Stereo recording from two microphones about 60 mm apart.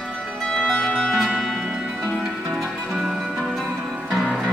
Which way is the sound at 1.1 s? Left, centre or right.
Centre.